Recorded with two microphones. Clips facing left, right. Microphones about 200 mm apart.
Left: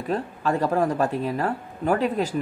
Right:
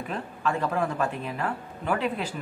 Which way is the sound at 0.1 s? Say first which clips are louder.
Left 6 dB; 40° left (ahead or behind).